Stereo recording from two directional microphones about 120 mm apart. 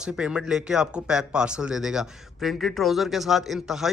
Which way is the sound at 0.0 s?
5° right (ahead or behind).